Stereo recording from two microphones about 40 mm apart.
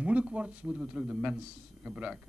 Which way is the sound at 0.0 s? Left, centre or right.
Right.